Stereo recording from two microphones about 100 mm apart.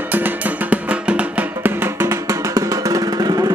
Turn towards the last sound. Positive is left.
turn(degrees=-40)  # may be behind; listen again after turning